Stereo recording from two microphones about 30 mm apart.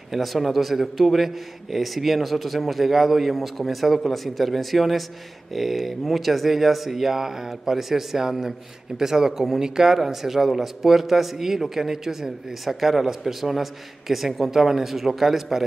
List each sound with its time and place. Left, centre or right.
0.1 s a man's voice: centre
10.0 s a man's voice: centre